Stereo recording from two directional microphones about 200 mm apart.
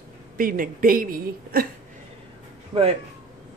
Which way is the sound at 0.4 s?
45° right (ahead or behind).